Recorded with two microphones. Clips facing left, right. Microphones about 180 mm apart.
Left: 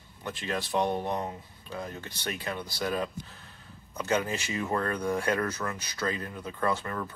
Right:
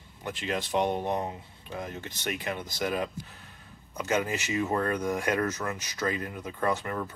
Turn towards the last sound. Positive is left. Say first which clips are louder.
# right 1 dB
turn(degrees=-20)  # may be behind; listen again after turning